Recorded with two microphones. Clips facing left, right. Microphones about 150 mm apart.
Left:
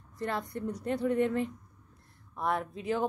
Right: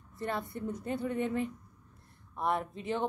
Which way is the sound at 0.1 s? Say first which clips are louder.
Left 2 dB; 5° right (ahead or behind).